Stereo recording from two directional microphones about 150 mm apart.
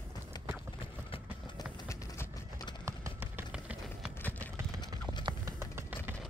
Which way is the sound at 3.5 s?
5° right (ahead or behind).